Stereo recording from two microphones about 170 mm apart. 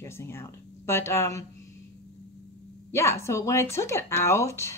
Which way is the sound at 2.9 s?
15° left (ahead or behind).